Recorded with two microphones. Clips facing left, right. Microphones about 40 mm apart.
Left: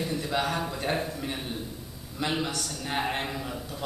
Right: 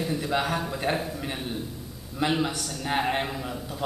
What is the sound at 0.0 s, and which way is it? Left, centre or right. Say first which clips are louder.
A man's voice: right 2 dB; centre.